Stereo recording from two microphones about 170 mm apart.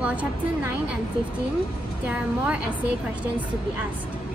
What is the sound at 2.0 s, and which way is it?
Speech, 5° right (ahead or behind).